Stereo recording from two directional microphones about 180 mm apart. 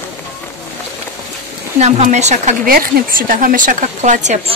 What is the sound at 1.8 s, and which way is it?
A woman's voice, 40° right (ahead or behind).